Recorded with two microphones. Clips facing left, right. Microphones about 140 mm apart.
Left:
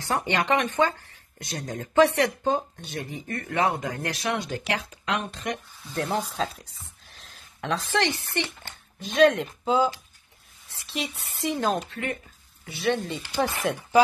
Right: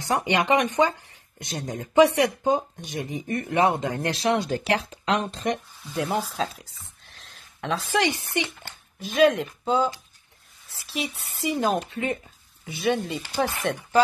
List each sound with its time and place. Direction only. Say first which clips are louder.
0.0 s speech: right 2 dB; 15° right (ahead or behind); by 5.6 s 30° right (ahead or behind)
5.9 s speech: right 1 dB; 5° right (ahead or behind)
9.0 s speech: even; centre (ahead or behind)
11.9 s speech: right 4 dB; 20° right (ahead or behind)
12.9 s speech: right 1 dB; centre (ahead or behind)